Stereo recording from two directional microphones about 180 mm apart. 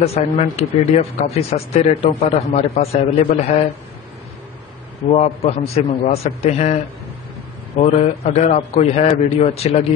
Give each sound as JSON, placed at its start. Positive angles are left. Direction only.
{"t": 0.0, "sound": "speech", "side_deg": 35}
{"t": 5.1, "sound": "speech", "side_deg": 40}